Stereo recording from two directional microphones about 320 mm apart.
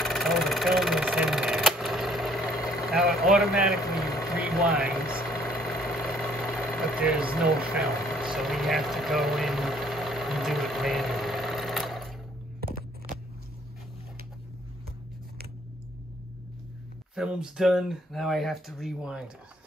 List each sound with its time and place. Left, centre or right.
0.0 s vehicle: centre
5.1 s engine: centre
12.5 s a sound: right
17.1 s speech: centre